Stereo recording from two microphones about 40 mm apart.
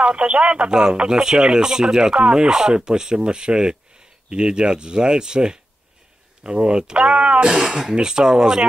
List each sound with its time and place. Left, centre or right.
0.0 s speech: right
7.4 s speech: centre